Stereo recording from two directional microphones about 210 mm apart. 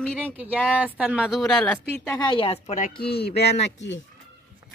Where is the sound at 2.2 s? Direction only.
25° left (ahead or behind).